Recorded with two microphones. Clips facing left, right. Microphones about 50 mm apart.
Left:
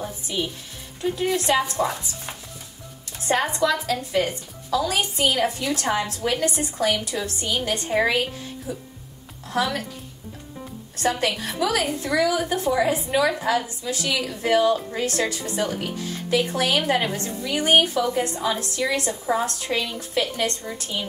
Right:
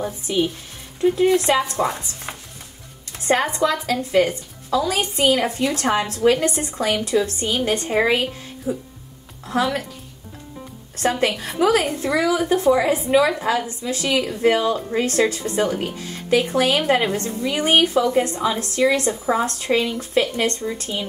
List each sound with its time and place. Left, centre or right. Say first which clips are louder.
0.0 s music: right 6 dB; right
1.1 s a woman's voice: right 3 dB; right
11.0 s a woman's voice: right 3 dB; right